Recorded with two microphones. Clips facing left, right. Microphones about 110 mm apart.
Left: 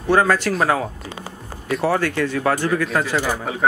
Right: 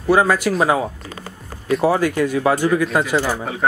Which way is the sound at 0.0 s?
10° right (ahead or behind).